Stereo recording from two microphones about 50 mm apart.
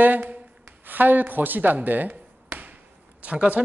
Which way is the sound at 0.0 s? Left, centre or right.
Right.